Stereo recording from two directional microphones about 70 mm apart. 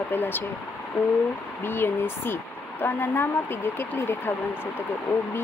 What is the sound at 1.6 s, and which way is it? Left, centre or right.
Speech, left.